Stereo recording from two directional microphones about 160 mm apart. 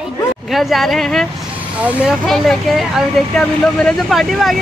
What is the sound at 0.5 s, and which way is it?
Speech, centre (ahead or behind).